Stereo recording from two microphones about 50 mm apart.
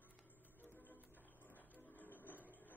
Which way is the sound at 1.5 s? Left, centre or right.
Left.